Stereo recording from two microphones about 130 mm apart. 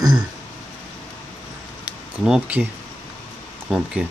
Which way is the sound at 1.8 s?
10° right (ahead or behind).